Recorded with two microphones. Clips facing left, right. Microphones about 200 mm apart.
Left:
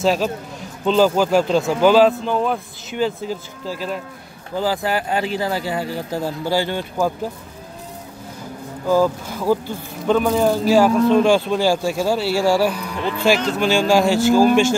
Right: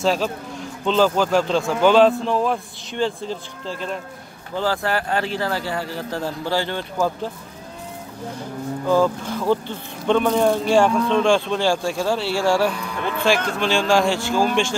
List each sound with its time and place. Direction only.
0.0 s speech: 5° left (ahead or behind)
8.8 s speech: 10° left (ahead or behind)
14.2 s a man's voice: 40° left (ahead or behind)